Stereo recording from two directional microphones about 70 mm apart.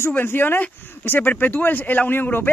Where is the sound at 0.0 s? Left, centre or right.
Left.